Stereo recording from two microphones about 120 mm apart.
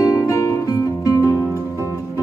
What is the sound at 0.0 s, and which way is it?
Music, 25° left (ahead or behind).